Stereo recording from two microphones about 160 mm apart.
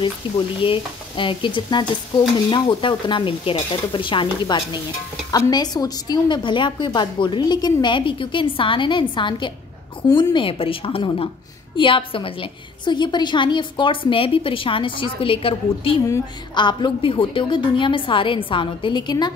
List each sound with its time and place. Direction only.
0.2 s a woman's voice: 30° left (ahead or behind)